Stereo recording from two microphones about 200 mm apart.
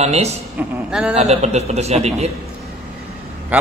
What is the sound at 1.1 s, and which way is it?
A man's voice, 30° right (ahead or behind).